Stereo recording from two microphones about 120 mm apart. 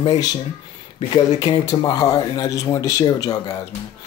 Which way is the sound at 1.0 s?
35° left (ahead or behind).